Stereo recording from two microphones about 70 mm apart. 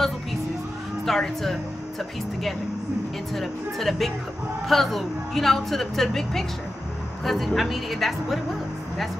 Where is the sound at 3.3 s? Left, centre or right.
Centre.